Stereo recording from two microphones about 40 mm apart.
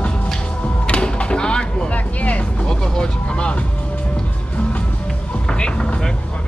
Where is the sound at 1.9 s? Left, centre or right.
Left.